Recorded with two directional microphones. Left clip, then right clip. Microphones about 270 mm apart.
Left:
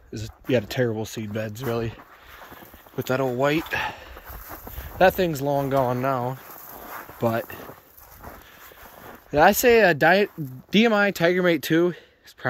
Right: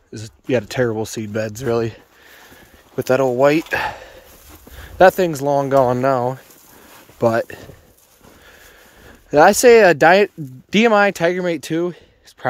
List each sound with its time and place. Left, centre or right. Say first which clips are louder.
0.1 s speech: right 4 dB; centre
3.0 s speech: right 9 dB; centre
9.3 s speech: right 7 dB; centre